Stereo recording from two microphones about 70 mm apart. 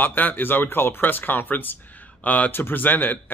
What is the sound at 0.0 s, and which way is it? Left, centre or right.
A man's voice, left.